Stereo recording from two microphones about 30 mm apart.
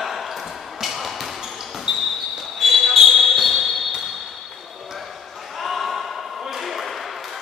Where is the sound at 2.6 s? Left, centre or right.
Centre.